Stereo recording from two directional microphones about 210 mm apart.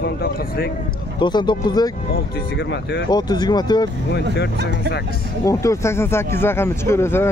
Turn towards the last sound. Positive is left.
turn(degrees=10)  # may be behind; listen again after turning